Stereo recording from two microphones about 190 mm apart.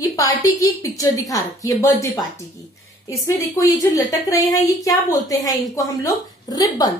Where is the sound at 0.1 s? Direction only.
20° left (ahead or behind).